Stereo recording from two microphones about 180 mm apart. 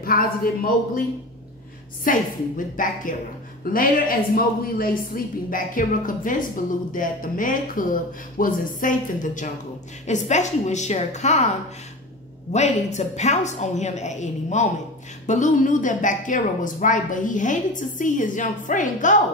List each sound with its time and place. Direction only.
0.0 s a woman's voice: 55° left (ahead or behind)
2.0 s a woman's voice: 50° left (ahead or behind)
12.5 s a woman's voice: 40° left (ahead or behind)